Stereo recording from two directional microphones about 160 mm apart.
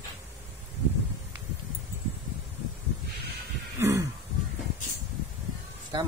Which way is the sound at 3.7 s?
15° right (ahead or behind).